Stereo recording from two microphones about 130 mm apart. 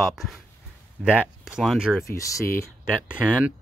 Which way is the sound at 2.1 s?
20° left (ahead or behind).